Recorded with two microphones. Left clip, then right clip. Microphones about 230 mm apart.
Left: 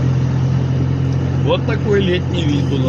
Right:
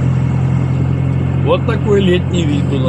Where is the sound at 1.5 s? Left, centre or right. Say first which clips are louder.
Right 3 dB; centre.